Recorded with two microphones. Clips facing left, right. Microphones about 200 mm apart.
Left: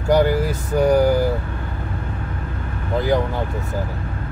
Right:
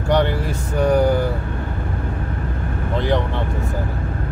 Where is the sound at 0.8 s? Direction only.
Centre (ahead or behind).